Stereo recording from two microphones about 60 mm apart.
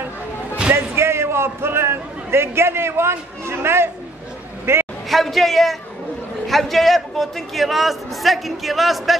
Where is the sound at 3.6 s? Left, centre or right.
Right.